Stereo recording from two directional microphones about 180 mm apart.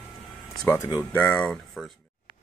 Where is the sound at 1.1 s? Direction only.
10° left (ahead or behind).